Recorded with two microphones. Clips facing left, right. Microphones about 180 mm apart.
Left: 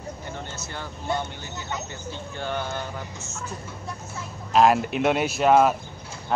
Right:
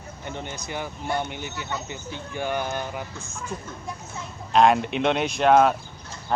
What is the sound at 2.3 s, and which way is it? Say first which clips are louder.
Speech: right 3 dB; 15° right (ahead or behind).